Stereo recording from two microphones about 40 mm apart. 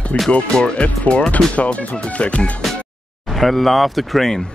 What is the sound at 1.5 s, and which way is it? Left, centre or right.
Speech, left.